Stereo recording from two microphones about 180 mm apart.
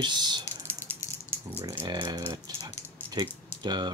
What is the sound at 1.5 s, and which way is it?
Speech, 15° right (ahead or behind).